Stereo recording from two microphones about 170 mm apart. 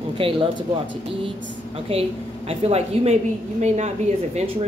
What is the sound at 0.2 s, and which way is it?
Speech, 30° right (ahead or behind).